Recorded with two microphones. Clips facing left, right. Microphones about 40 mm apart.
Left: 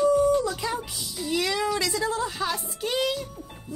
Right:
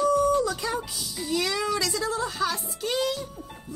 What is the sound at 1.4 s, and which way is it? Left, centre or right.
Speech, left.